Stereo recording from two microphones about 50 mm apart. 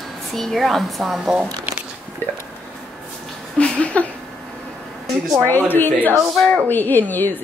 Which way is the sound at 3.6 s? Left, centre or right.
Left.